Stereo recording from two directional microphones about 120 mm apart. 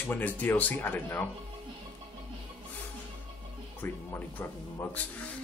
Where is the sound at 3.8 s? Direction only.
20° left (ahead or behind).